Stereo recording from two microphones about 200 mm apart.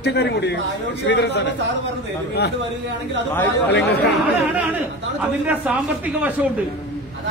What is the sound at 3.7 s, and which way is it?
Speech, 55° left (ahead or behind).